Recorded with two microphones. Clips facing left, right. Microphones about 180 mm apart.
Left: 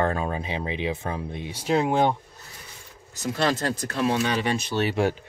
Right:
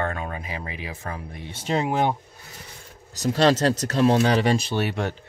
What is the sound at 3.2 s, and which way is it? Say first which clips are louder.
Speech: right 6 dB; 40° right (ahead or behind).